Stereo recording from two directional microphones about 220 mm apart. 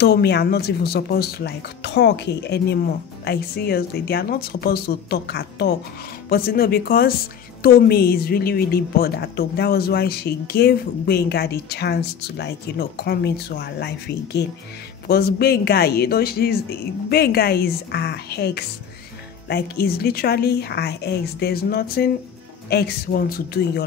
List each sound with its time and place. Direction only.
0.0 s a woman's voice: 50° left (ahead or behind)